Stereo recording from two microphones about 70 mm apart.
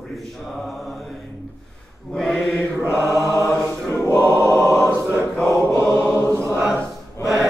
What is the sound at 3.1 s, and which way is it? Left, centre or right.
Mantra, right.